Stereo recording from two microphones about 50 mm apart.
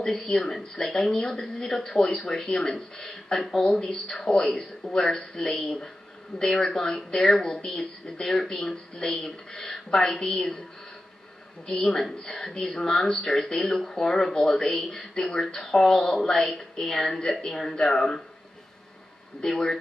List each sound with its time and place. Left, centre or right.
0.3 s speech: centre
11.6 s speech: centre
19.4 s speech: centre